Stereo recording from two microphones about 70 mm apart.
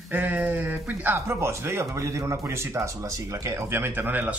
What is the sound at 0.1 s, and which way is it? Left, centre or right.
A man's voice, right.